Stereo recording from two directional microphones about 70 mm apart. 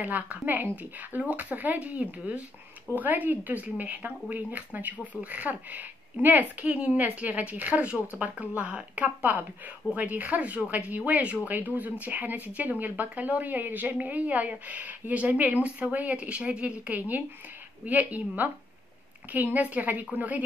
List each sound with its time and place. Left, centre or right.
0.0 s speech: right